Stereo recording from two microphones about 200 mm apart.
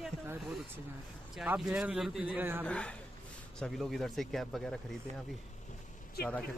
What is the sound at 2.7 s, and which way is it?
Speech, 5° left (ahead or behind).